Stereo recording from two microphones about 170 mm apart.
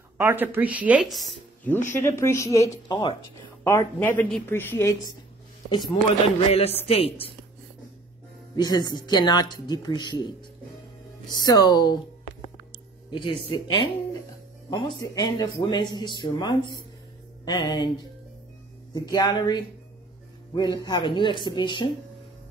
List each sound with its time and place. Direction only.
0.2 s speech: 15° right (ahead or behind)
2.0 s a woman's voice: 15° left (ahead or behind)
3.6 s a woman's voice: 15° left (ahead or behind)
6.5 s a woman's voice: 35° left (ahead or behind)
8.5 s speech: 25° left (ahead or behind)
11.3 s speech: 20° left (ahead or behind)
13.1 s speech: 30° left (ahead or behind)
18.9 s speech: 25° left (ahead or behind)